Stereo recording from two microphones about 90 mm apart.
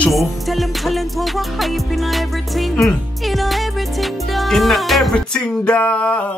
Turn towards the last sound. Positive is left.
turn(degrees=10)  # may be behind; listen again after turning